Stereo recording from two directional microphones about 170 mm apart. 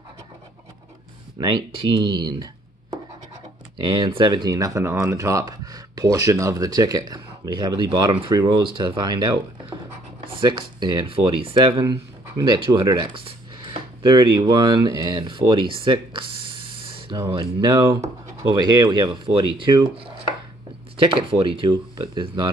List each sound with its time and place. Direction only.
1.4 s speech: 30° right (ahead or behind)
21.0 s speech: 30° right (ahead or behind)